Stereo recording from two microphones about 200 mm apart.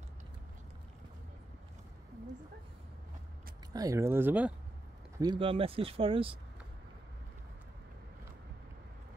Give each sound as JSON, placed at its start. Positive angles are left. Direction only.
{"t": 3.7, "sound": "speech", "side_deg": -15}
{"t": 5.2, "sound": "speech", "side_deg": -25}